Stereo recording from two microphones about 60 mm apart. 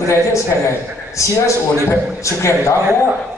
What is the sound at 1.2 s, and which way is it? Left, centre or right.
A man's voice, left.